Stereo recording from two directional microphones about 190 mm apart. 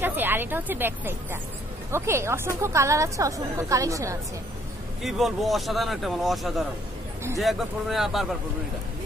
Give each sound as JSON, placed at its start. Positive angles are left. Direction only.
{"t": 0.0, "sound": "a woman's voice", "side_deg": -10}
{"t": 5.0, "sound": "speech", "side_deg": 0}